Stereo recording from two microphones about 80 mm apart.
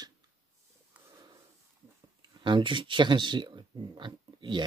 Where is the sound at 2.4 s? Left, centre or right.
Right.